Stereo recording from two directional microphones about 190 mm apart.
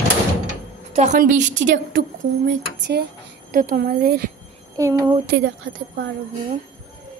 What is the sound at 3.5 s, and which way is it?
Speech, 45° right (ahead or behind).